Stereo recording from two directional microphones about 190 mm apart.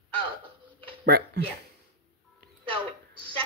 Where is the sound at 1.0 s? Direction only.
55° right (ahead or behind).